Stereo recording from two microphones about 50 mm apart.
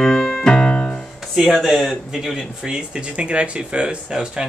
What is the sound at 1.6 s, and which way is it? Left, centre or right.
Speech, centre.